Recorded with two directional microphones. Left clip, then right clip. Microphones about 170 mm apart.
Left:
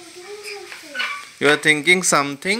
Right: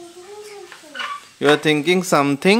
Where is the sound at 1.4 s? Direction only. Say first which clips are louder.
Left 1 dB; 15° right (ahead or behind).